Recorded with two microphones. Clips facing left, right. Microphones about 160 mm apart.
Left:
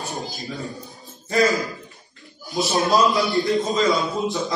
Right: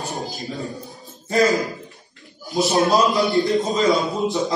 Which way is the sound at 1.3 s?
20° right (ahead or behind).